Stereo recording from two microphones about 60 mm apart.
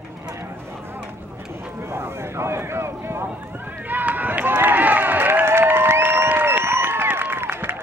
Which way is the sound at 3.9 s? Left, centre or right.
Right.